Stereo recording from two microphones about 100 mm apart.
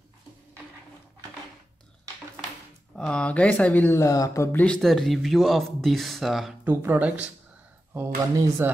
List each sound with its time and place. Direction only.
3.1 s speech: 10° left (ahead or behind)
3.9 s speech: 35° left (ahead or behind)
4.5 s speech: 15° left (ahead or behind)
4.7 s speech: 5° left (ahead or behind)
6.6 s speech: 20° right (ahead or behind)
7.9 s speech: 25° right (ahead or behind)